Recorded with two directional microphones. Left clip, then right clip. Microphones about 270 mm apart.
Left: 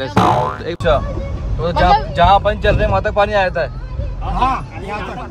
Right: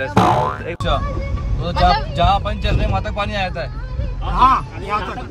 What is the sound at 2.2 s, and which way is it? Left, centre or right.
Speech, centre.